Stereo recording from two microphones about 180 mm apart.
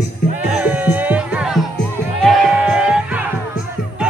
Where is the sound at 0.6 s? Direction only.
10° right (ahead or behind).